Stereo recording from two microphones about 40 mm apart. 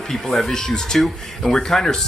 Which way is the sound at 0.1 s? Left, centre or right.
Centre.